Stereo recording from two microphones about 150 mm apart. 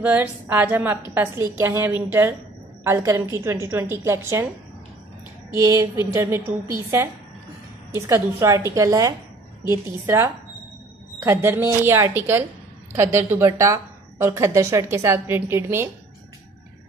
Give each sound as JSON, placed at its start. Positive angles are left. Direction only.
{"t": 0.0, "sound": "a woman's voice", "side_deg": -10}
{"t": 5.7, "sound": "a woman's voice", "side_deg": -20}
{"t": 7.9, "sound": "a woman's voice", "side_deg": -20}